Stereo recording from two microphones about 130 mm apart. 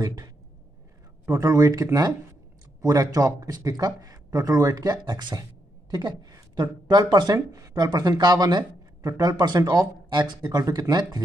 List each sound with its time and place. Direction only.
0.0 s a man's voice: 30° right (ahead or behind)